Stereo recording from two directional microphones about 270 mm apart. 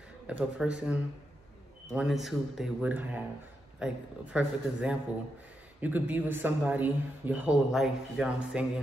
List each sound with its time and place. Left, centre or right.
0.3 s a man's voice: centre